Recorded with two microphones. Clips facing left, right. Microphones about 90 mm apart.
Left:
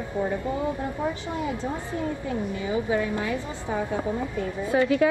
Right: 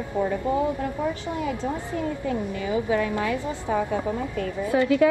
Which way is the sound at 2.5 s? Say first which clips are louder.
Right 1 dB; 20° left (ahead or behind).